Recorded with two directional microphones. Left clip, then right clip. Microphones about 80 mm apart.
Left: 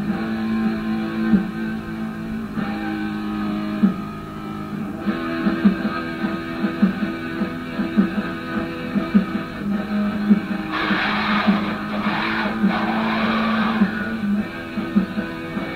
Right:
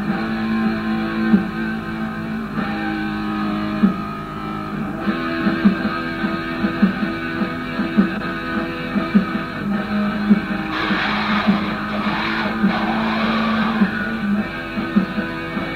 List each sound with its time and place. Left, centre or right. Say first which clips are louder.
0.1 s music: right 3 dB; left
3.3 s a sound: right 2 dB; left
5.0 s music: right 2 dB; left
8.5 s music: right 3 dB; left
10.2 s music: right 2 dB; left
12.9 s vehicle: right 1 dB; left
15.0 s music: right 2 dB; left